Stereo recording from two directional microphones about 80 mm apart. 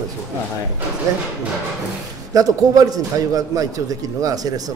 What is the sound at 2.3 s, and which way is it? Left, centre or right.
A man's voice, right.